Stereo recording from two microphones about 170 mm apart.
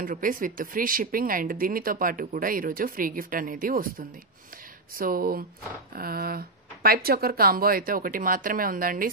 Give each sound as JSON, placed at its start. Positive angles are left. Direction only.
{"t": 0.0, "sound": "speech", "side_deg": -55}
{"t": 4.9, "sound": "speech", "side_deg": -55}